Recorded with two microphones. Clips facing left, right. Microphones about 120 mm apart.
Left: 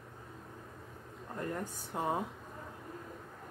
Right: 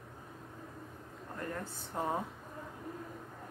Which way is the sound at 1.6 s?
10° left (ahead or behind).